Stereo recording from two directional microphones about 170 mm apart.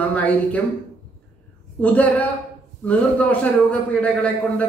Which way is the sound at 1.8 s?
10° left (ahead or behind).